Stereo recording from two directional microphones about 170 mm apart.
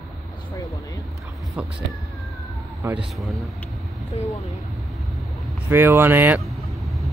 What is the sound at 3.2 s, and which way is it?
Speech, centre (ahead or behind).